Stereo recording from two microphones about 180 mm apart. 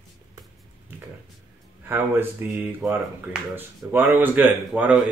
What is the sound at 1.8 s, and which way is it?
Speech, 10° right (ahead or behind).